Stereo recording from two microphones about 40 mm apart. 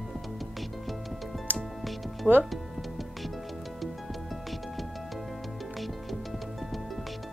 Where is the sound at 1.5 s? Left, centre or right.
Right.